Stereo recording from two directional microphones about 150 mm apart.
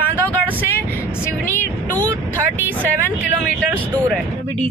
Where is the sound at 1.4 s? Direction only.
15° left (ahead or behind).